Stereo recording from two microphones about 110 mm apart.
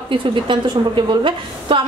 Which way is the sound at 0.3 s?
50° right (ahead or behind).